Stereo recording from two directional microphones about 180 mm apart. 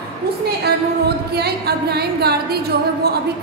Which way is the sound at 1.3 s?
65° right (ahead or behind).